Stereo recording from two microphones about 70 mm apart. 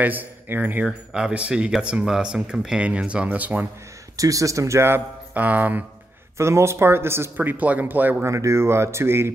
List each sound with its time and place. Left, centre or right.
0.0 s speech: right
0.8 s speech: centre
4.2 s speech: right
5.3 s speech: right
6.3 s a man's voice: right
8.3 s a man's voice: right